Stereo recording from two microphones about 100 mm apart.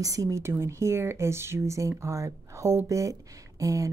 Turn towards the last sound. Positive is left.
turn(degrees=-35)  # may be behind; listen again after turning